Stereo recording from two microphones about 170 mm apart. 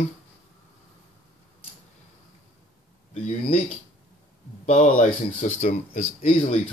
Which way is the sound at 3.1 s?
35° left (ahead or behind).